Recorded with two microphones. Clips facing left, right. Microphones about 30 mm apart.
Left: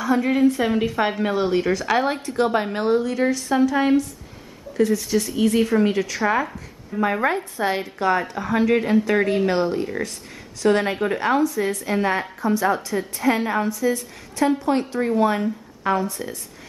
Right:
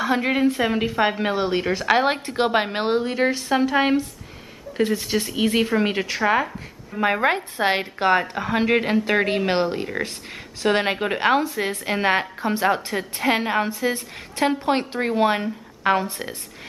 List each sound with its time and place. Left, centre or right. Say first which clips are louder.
0.0 s a woman's voice: left 1 dB; right
0.4 s speech: left 2 dB; right
0.7 s a woman's voice: even; centre
1.2 s a woman's voice: left 2 dB; right